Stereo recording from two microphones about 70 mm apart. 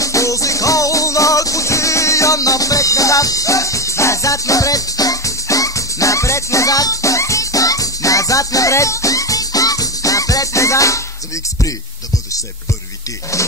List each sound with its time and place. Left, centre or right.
0.0 s music: left